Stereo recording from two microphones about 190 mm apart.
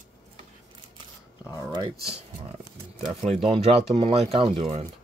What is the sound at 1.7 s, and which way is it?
Speech, 25° right (ahead or behind).